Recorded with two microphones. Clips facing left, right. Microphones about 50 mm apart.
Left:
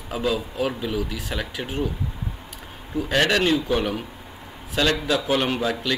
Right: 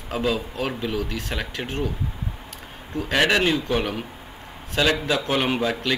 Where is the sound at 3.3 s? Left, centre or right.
Centre.